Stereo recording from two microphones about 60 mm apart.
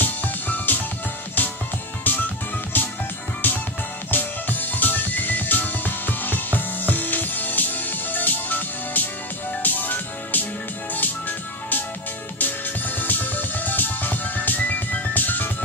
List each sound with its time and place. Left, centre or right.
0.0 s music: left
2.1 s music: left